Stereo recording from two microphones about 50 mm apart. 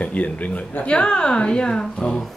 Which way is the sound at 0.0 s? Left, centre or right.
Left.